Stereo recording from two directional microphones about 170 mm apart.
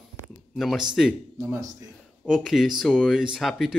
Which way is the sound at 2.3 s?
Centre (ahead or behind).